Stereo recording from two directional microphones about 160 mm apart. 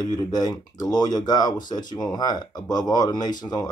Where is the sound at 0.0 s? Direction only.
25° left (ahead or behind).